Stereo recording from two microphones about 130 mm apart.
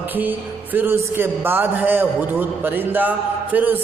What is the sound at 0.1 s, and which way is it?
Speech, 15° right (ahead or behind).